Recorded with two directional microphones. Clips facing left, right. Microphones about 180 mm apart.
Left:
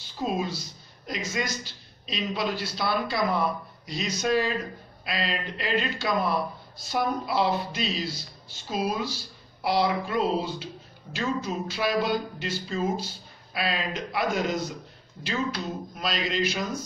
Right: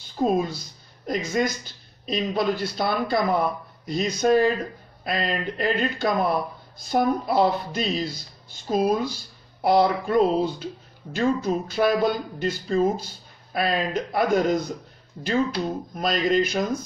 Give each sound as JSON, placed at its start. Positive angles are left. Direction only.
{"t": 0.2, "sound": "a woman's voice", "side_deg": -50}
{"t": 15.6, "sound": "speech", "side_deg": -50}